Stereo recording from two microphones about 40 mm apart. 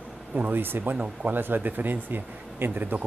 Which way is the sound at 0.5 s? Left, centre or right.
Right.